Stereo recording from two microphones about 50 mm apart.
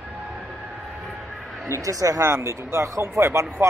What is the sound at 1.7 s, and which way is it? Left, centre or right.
Speech, right.